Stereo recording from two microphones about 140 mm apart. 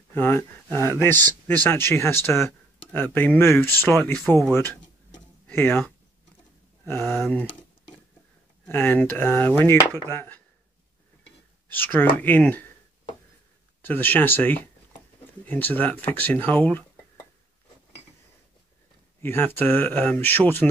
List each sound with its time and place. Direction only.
0.1 s speech: 15° left (ahead or behind)
6.9 s speech: 15° left (ahead or behind)
8.6 s speech: 15° left (ahead or behind)
11.7 s speech: 15° left (ahead or behind)
13.8 s speech: 15° left (ahead or behind)
19.2 s speech: 15° left (ahead or behind)